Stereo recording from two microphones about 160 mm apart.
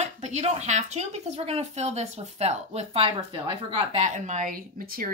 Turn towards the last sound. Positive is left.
turn(degrees=-65)  # may be behind; listen again after turning